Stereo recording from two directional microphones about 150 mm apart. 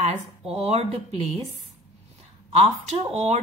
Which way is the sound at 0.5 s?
45° right (ahead or behind).